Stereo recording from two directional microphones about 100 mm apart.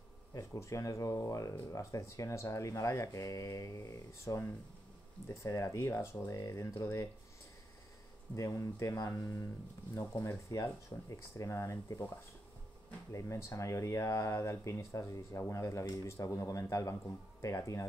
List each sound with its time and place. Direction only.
0.3 s speech: 30° left (ahead or behind)
8.4 s speech: 30° left (ahead or behind)
13.1 s speech: 30° left (ahead or behind)